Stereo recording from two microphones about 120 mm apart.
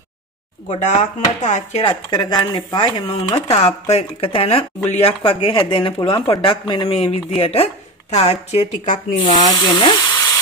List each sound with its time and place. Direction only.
0.7 s speech: 80° left
1.9 s speech: 35° left (ahead or behind)
3.4 s speech: 65° left (ahead or behind); by 9.4 s 90° left
9.4 s speech: 35° left (ahead or behind)